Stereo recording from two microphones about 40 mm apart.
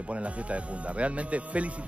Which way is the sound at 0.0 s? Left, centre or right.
Right.